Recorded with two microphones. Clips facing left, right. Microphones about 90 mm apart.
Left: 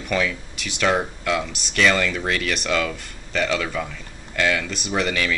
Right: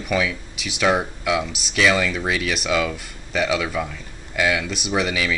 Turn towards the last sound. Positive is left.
turn(degrees=-5)  # may be behind; listen again after turning